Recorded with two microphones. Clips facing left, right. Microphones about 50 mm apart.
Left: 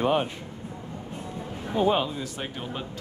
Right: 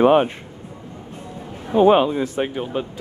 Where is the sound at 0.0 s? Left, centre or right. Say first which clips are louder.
Right 10 dB; right.